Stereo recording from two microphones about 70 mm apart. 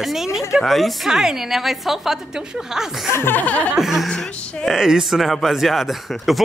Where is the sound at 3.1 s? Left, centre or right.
Left.